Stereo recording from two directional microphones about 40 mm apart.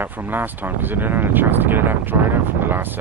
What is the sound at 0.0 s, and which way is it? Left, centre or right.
Speech, right.